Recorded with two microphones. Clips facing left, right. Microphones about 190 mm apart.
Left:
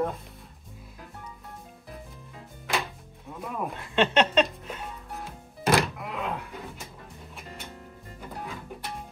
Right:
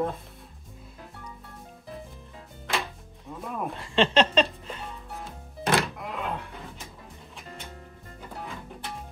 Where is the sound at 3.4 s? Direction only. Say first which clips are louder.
Even; centre (ahead or behind).